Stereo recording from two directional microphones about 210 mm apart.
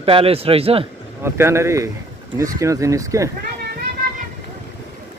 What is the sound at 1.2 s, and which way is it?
Speech, 10° right (ahead or behind).